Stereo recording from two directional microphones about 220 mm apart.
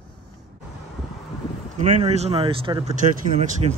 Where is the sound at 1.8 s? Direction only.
30° right (ahead or behind).